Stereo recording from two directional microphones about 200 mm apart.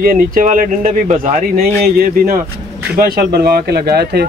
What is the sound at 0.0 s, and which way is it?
A man's voice, 45° right (ahead or behind).